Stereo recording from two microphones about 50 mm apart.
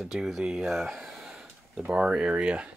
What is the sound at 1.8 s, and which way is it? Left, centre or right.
Speech, right.